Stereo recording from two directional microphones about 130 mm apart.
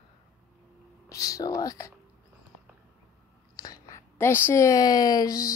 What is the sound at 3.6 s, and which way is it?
Speech, 25° left (ahead or behind).